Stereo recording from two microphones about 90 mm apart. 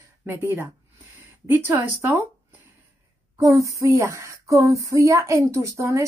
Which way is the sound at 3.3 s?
35° right (ahead or behind).